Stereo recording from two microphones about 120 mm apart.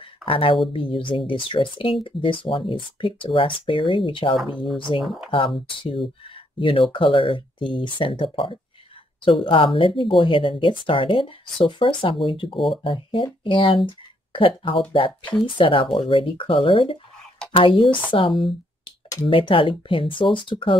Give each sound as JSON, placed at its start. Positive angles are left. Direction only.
{"t": 0.2, "sound": "speech", "side_deg": 50}